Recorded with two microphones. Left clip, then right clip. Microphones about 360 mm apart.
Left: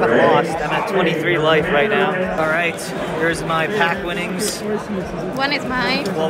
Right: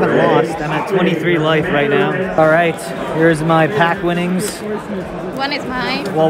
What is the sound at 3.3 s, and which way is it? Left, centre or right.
A man's voice, right.